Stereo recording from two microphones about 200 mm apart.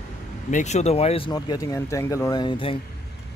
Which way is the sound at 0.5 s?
35° left (ahead or behind).